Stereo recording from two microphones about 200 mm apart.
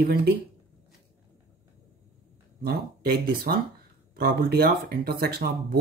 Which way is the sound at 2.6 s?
50° right (ahead or behind).